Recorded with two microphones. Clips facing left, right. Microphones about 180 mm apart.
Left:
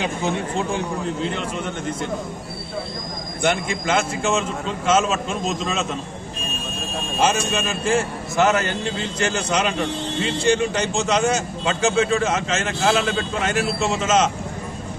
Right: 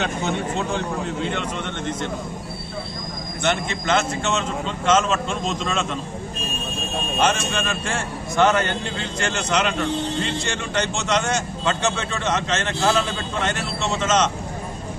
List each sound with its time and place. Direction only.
3.4 s a man's voice: 10° left (ahead or behind)
7.2 s a man's voice: 5° left (ahead or behind)